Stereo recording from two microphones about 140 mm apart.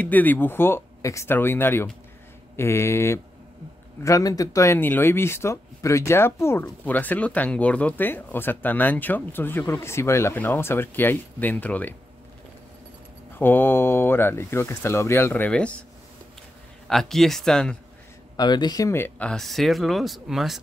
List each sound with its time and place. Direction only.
0.0 s speech: 10° left (ahead or behind)
13.4 s speech: 15° left (ahead or behind)
16.8 s speech: centre (ahead or behind)
18.3 s speech: 30° left (ahead or behind); by 20.6 s centre (ahead or behind)